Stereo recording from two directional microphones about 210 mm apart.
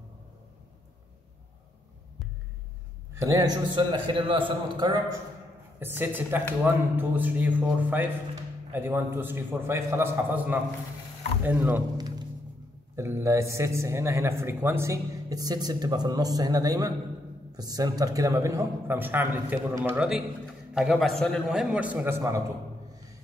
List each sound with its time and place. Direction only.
3.2 s a man's voice: 15° right (ahead or behind)
5.8 s a man's voice: 10° right (ahead or behind)